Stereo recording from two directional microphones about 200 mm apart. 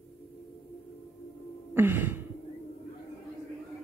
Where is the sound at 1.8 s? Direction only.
10° right (ahead or behind).